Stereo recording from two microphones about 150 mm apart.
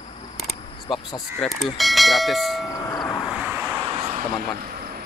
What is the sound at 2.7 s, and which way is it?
Train, 25° left (ahead or behind).